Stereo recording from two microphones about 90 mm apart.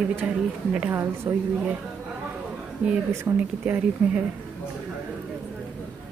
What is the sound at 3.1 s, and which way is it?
Speech, 25° right (ahead or behind).